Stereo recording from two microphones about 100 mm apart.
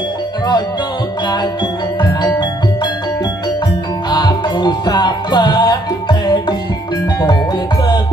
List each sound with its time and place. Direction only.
4.1 s music: 45° left (ahead or behind)